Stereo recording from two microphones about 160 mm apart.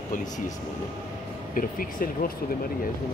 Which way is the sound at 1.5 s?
60° left (ahead or behind).